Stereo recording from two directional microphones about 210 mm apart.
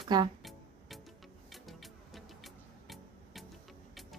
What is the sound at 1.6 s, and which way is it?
Music, centre (ahead or behind).